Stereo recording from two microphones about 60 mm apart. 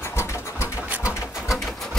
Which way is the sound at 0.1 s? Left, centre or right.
Left.